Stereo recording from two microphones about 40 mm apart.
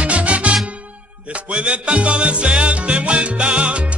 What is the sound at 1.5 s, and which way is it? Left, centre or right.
Music, right.